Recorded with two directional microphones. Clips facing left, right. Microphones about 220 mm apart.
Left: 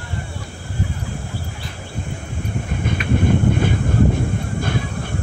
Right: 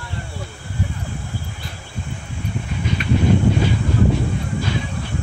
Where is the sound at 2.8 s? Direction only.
50° left (ahead or behind).